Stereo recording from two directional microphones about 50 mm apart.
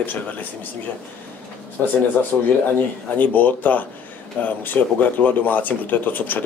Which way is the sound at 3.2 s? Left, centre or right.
Left.